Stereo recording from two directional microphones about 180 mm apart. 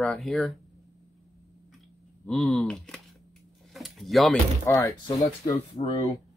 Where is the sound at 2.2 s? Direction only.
Centre (ahead or behind).